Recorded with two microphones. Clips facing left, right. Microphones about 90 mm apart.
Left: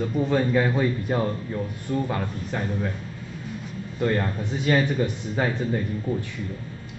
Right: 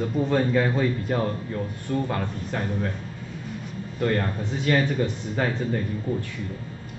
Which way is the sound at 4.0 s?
15° left (ahead or behind).